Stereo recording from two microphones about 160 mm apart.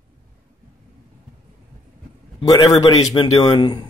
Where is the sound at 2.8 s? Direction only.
35° left (ahead or behind).